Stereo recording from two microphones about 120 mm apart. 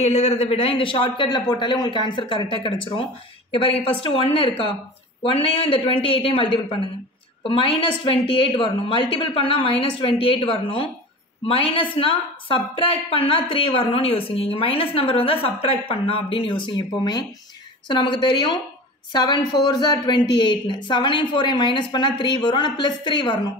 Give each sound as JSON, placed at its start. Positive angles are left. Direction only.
{"t": 0.0, "sound": "a woman's voice", "side_deg": 65}